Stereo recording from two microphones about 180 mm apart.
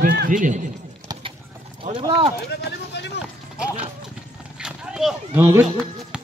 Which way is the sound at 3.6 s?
5° right (ahead or behind).